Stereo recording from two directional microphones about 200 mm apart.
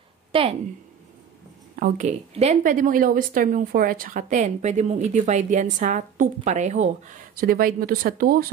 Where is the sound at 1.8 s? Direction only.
35° right (ahead or behind).